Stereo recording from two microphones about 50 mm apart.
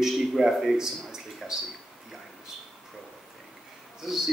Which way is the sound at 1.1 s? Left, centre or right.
Centre.